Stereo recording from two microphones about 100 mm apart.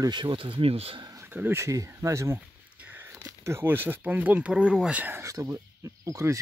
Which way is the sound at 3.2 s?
30° right (ahead or behind).